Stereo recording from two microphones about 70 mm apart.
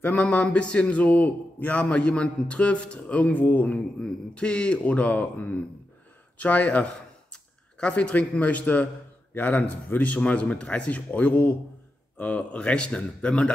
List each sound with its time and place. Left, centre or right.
0.0 s a man's voice: left
4.0 s a man's voice: centre